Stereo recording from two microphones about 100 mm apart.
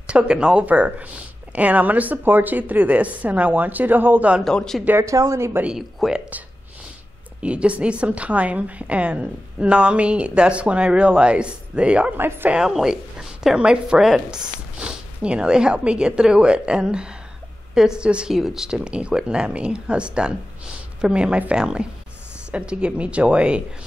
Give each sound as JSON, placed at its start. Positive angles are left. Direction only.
{"t": 0.0, "sound": "a woman's voice", "side_deg": -10}
{"t": 4.5, "sound": "speech", "side_deg": 5}
{"t": 4.8, "sound": "speech", "side_deg": -25}
{"t": 5.6, "sound": "a woman's voice", "side_deg": -5}
{"t": 7.4, "sound": "a woman's voice", "side_deg": -10}
{"t": 12.5, "sound": "a woman's voice", "side_deg": -5}